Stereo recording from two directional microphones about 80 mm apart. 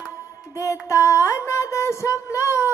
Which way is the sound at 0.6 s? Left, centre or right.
Left.